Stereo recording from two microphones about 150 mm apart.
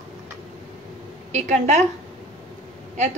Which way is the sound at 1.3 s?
50° right (ahead or behind).